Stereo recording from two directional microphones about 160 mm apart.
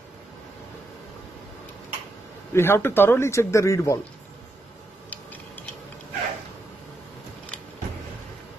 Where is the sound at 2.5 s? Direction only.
15° left (ahead or behind).